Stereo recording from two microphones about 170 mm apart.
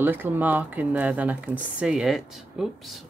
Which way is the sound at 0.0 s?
10° right (ahead or behind).